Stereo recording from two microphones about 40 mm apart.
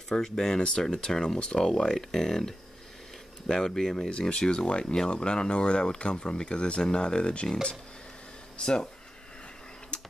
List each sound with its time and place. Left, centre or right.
0.1 s speech: centre
8.5 s speech: left
9.9 s a sound: left